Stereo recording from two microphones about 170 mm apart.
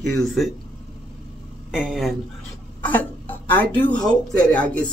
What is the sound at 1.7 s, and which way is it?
Speech, 5° right (ahead or behind).